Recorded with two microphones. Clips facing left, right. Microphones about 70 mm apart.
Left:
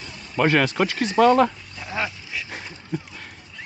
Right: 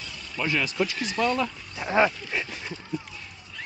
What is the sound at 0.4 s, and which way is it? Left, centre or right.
Speech, left.